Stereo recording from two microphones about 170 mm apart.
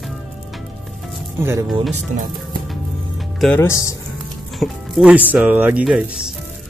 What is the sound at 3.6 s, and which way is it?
Speech, 20° left (ahead or behind).